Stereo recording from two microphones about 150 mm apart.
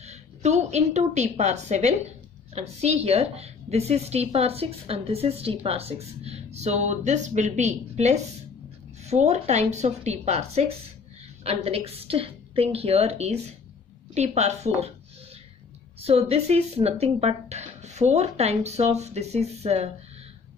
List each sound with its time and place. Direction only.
0.0 s a woman's voice: 50° right (ahead or behind)
16.0 s a woman's voice: 45° right (ahead or behind)